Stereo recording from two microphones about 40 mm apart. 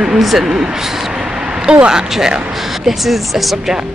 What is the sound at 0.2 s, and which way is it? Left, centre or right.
Speech, centre.